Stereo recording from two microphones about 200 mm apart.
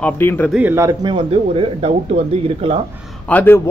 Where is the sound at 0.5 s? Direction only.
10° right (ahead or behind); by 2.8 s 30° right (ahead or behind).